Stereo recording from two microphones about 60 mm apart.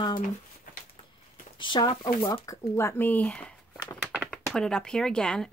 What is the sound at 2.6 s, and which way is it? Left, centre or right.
Speech, left.